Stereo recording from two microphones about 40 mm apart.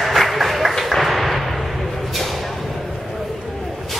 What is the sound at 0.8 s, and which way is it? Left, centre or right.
Arrow, centre.